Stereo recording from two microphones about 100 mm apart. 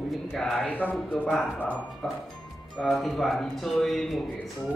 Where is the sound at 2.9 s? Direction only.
Centre (ahead or behind).